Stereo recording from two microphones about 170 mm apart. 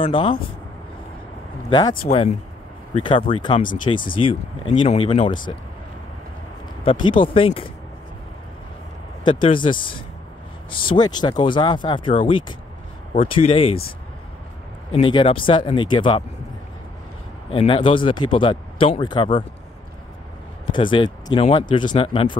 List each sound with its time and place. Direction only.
0.0 s speech: 30° left (ahead or behind)
1.7 s speech: 25° left (ahead or behind)
2.0 s speech: 40° left (ahead or behind)
6.8 s speech: 30° left (ahead or behind)
9.2 s speech: 30° left (ahead or behind)
10.8 s speech: 25° left (ahead or behind)
14.9 s speech: 30° left (ahead or behind)
17.5 s speech: 30° left (ahead or behind)
20.7 s speech: 30° left (ahead or behind)